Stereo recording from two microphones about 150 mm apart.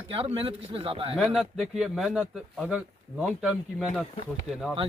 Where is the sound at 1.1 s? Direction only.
Centre (ahead or behind).